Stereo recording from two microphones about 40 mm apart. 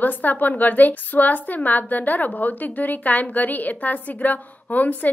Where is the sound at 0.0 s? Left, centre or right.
Left.